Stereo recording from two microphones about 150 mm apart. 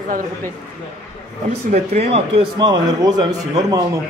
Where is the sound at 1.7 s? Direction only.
45° right (ahead or behind).